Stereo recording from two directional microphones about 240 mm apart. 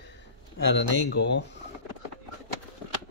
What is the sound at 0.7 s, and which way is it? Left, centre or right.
Speech, left.